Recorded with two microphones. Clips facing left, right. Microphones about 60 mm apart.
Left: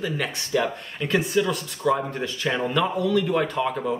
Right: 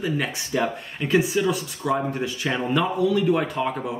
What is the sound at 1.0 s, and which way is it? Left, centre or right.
Speech, centre.